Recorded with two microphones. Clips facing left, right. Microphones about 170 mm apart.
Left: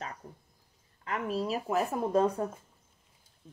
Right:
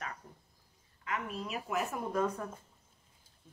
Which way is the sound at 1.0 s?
35° left (ahead or behind).